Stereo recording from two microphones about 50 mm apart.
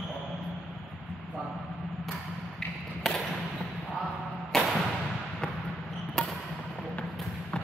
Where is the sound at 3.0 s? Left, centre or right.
Centre.